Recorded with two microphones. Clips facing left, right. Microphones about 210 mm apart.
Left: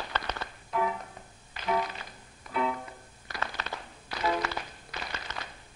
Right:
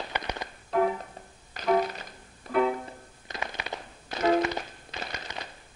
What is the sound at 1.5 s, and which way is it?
Music, 45° right (ahead or behind).